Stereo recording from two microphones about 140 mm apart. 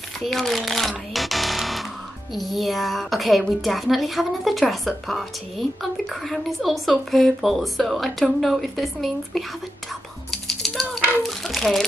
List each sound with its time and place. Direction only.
0.2 s a woman's voice: centre (ahead or behind)
10.3 s rattle: centre (ahead or behind)
11.2 s a sound: centre (ahead or behind)